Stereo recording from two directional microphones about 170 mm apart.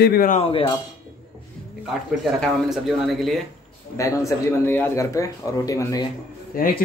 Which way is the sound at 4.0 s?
20° left (ahead or behind).